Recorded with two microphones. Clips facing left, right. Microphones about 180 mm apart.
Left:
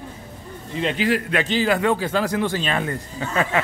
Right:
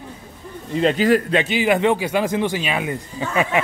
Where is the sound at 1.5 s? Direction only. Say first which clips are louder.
Right 1 dB; 15° right (ahead or behind).